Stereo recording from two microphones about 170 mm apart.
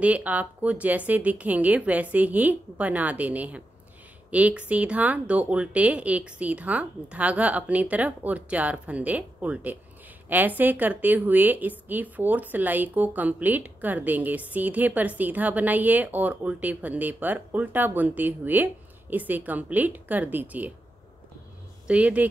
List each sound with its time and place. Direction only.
0.0 s speech: 10° right (ahead or behind)
21.8 s speech: 5° right (ahead or behind)